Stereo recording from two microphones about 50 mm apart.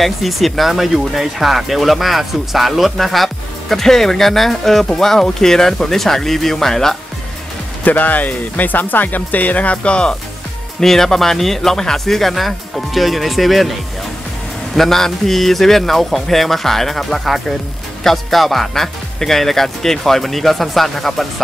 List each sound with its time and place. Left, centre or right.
0.0 s speech: centre
7.8 s speech: left
10.8 s speech: centre
14.8 s speech: centre